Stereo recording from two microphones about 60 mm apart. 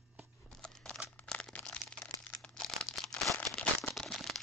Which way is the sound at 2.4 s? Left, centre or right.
Centre.